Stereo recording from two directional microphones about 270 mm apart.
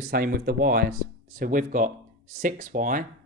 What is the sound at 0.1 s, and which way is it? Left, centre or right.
Speech, right.